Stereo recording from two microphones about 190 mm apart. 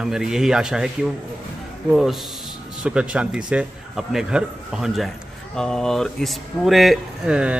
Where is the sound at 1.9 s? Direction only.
Centre (ahead or behind).